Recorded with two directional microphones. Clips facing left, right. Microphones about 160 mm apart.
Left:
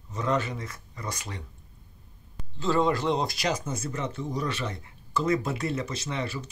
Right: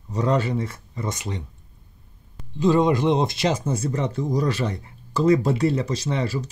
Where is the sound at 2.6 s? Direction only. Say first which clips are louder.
Right 6 dB; 15° right (ahead or behind); by 6.5 s 35° right (ahead or behind).